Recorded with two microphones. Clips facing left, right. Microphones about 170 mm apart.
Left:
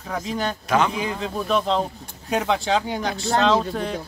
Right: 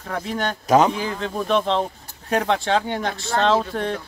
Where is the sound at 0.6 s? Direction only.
40° right (ahead or behind).